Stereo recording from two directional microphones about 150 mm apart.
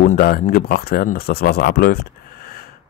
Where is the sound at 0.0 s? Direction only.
70° left (ahead or behind); by 2.6 s 85° left.